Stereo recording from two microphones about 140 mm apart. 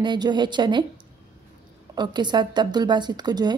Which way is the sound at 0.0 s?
30° right (ahead or behind).